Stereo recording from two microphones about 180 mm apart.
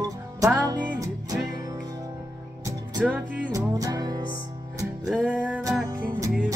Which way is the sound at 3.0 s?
5° right (ahead or behind).